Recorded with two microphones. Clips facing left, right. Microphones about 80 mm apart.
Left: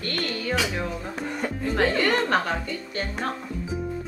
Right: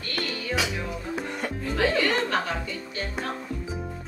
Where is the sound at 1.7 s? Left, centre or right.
Left.